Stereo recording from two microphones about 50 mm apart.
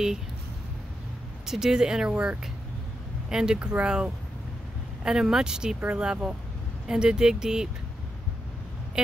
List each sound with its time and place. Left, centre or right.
1.4 s speech: centre
3.5 s speech: right
3.8 s speech: centre
9.0 s speech: centre